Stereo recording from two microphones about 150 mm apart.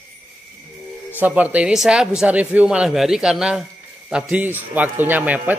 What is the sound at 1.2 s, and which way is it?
A man's voice, 10° right (ahead or behind).